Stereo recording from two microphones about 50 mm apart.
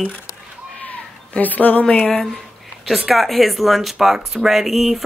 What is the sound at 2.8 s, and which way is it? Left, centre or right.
Speech, centre.